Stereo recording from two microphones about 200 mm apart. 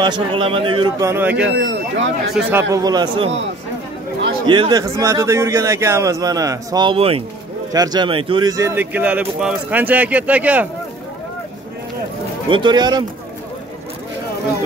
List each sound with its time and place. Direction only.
0.0 s a man's voice: 25° right (ahead or behind); by 1.5 s 10° right (ahead or behind)
1.5 s speech: 65° right (ahead or behind)
2.4 s a man's voice: 5° right (ahead or behind)
2.7 s a man's voice: 20° right (ahead or behind)
4.5 s speech: 20° right (ahead or behind)
12.4 s a man's voice: 25° right (ahead or behind)